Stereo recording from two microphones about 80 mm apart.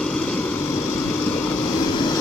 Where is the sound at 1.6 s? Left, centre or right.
Left.